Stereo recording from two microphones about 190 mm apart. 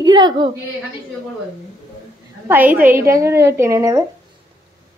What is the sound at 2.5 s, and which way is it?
A woman's voice, 10° right (ahead or behind).